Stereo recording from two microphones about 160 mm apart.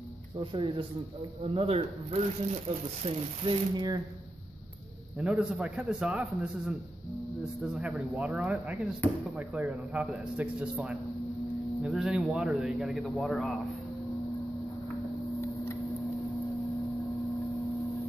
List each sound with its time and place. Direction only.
0.4 s speech: 30° right (ahead or behind)
5.2 s speech: 5° right (ahead or behind)
7.6 s a man's voice: 5° right (ahead or behind)